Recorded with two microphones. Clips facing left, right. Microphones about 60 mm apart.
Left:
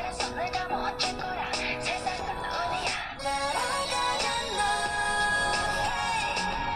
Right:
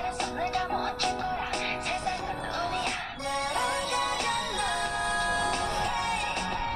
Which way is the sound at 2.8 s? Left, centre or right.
Left.